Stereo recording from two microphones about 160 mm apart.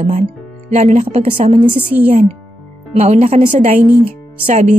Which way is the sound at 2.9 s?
45° right (ahead or behind).